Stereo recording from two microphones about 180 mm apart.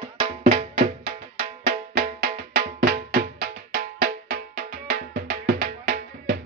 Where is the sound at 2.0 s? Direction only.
55° right (ahead or behind).